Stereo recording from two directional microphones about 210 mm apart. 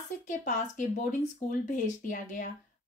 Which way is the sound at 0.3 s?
35° left (ahead or behind).